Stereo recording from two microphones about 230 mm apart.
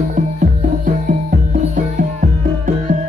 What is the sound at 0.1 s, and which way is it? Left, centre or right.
Music, right.